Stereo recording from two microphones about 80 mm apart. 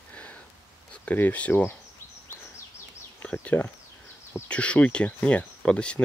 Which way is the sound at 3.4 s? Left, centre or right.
Left.